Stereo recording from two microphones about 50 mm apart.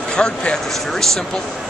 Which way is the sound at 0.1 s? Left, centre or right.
Centre.